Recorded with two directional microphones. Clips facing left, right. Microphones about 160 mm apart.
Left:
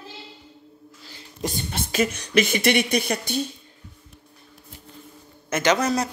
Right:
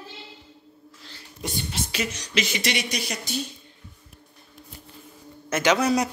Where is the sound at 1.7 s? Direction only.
50° left (ahead or behind).